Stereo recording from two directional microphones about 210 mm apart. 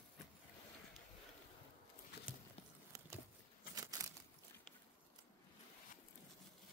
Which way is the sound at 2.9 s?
15° right (ahead or behind).